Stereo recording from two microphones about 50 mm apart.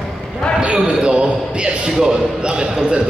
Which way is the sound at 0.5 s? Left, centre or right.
Centre.